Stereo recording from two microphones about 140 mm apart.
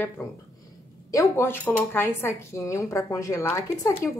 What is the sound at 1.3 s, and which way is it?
A woman's voice, 15° left (ahead or behind).